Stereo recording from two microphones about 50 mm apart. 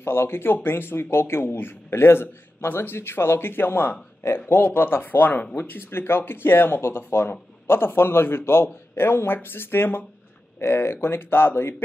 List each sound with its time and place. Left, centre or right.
0.0 s speech: left
5.6 s speech: left